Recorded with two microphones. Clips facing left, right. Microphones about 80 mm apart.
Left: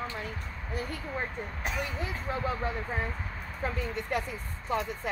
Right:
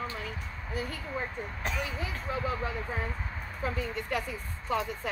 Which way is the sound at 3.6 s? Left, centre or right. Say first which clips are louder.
Even; left.